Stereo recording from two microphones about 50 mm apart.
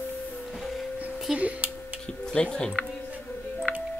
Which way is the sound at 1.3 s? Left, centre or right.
Right.